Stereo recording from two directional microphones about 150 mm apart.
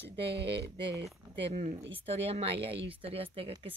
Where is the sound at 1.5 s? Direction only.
50° right (ahead or behind).